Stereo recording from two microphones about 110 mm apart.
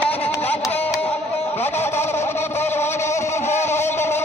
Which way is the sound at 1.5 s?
20° left (ahead or behind).